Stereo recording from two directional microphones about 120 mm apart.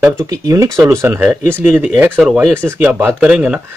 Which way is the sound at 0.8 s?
20° right (ahead or behind).